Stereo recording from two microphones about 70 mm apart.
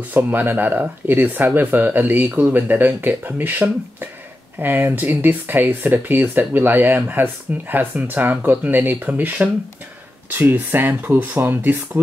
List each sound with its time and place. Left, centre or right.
0.1 s speech: right